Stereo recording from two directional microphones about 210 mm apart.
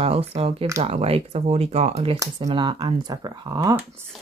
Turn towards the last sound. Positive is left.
turn(degrees=-15)  # may be behind; listen again after turning